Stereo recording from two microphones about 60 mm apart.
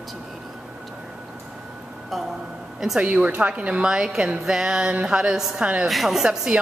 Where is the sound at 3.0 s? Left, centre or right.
Centre.